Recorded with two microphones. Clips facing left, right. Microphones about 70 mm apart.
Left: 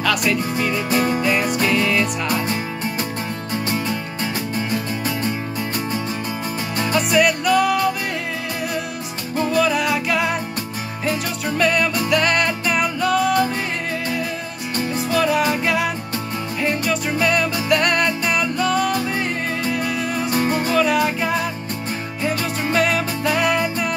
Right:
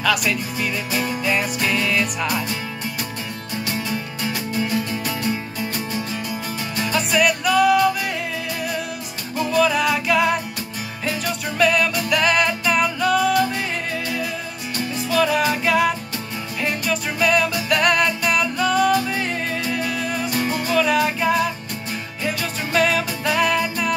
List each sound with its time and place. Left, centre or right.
0.0 s music: centre
0.9 s music: left
1.6 s music: centre
6.9 s music: centre
9.5 s music: centre
15.1 s music: centre
20.4 s music: left
20.7 s music: centre